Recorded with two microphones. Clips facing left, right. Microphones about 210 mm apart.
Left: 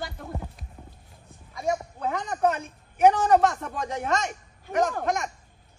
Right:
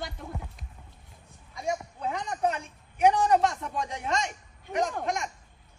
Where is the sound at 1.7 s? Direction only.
50° left (ahead or behind).